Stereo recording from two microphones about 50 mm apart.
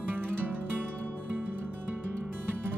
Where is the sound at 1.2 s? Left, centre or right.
Right.